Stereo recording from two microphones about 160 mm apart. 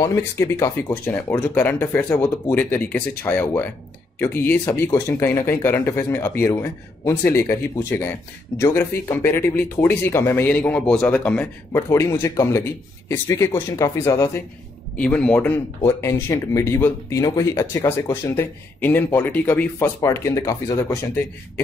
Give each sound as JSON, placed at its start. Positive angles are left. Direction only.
{"t": 0.0, "sound": "speech", "side_deg": 20}
{"t": 11.7, "sound": "speech", "side_deg": 20}
{"t": 15.0, "sound": "speech", "side_deg": 5}